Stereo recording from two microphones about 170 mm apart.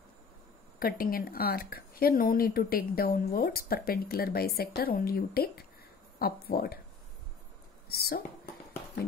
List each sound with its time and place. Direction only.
0.7 s speech: 60° left (ahead or behind)
7.9 s speech: 65° left (ahead or behind)